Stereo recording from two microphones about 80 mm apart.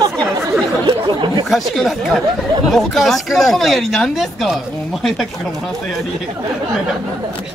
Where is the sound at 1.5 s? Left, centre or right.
Centre.